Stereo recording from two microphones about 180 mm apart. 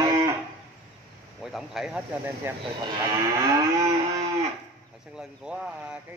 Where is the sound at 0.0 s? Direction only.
20° right (ahead or behind).